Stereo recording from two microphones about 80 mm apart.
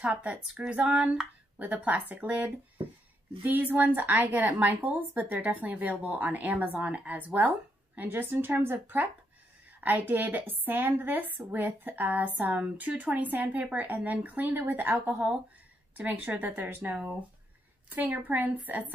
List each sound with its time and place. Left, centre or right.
0.1 s a woman's voice: centre
3.4 s a woman's voice: right